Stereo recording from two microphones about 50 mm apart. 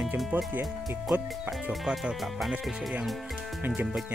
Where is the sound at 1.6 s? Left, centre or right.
Centre.